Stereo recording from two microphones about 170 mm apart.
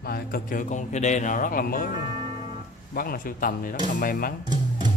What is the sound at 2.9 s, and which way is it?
Speech, 55° left (ahead or behind).